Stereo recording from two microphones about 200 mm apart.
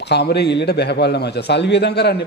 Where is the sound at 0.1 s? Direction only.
55° left (ahead or behind).